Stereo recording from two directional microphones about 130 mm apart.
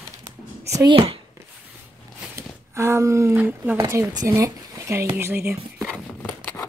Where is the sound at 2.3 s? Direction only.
20° right (ahead or behind).